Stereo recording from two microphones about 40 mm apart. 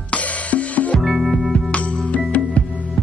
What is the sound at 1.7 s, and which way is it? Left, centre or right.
Music, left.